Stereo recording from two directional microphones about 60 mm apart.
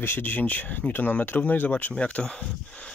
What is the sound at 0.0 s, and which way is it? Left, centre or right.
Speech, left.